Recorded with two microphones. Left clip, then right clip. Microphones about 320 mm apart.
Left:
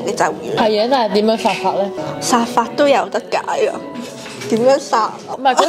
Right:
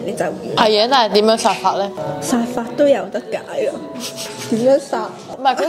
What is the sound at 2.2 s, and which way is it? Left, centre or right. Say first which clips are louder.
A woman's voice: left 8 dB; left.